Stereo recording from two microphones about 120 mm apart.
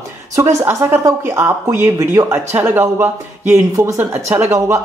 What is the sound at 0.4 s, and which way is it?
Speech, 25° right (ahead or behind).